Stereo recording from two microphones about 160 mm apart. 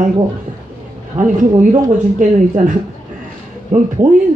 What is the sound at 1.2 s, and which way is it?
A woman's voice, 55° right (ahead or behind).